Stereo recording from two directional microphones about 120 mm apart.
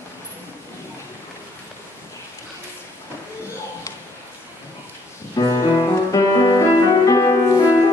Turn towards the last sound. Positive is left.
turn(degrees=30)  # may be behind; listen again after turning